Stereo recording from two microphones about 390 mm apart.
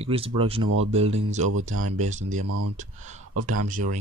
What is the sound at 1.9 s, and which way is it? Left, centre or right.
Speech, centre.